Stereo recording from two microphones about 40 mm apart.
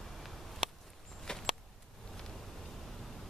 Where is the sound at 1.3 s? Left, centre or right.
Left.